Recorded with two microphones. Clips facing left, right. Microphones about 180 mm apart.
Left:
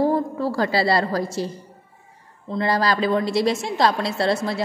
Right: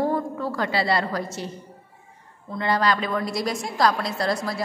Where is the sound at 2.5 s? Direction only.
35° left (ahead or behind).